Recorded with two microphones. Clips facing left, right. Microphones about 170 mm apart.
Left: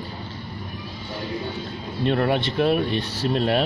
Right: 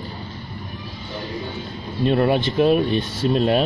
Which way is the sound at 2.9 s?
70° left (ahead or behind).